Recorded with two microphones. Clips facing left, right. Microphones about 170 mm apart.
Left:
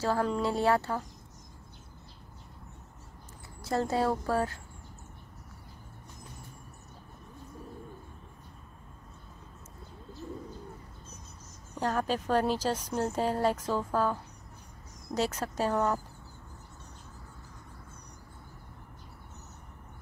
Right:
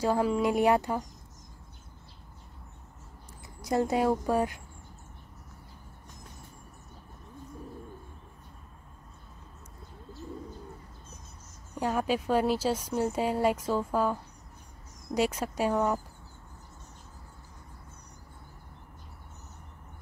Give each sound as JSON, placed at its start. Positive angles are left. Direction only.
{"t": 0.0, "sound": "speech", "side_deg": -10}
{"t": 3.6, "sound": "speech", "side_deg": -15}
{"t": 11.8, "sound": "speech", "side_deg": -10}
{"t": 15.1, "sound": "speech", "side_deg": -10}